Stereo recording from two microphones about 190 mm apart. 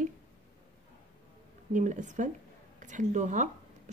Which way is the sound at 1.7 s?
40° right (ahead or behind).